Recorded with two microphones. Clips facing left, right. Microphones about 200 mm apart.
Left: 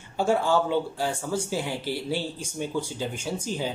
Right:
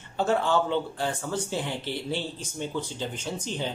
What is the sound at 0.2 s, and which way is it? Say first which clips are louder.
Speech: left 1 dB; 10° left (ahead or behind).